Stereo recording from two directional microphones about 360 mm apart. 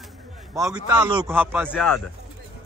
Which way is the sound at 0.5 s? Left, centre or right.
Centre.